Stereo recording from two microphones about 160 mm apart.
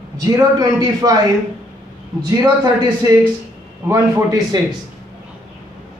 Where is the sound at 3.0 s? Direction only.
25° right (ahead or behind).